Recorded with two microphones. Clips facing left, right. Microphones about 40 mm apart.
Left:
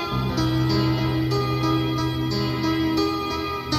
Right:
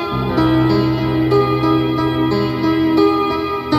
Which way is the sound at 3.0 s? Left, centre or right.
Right.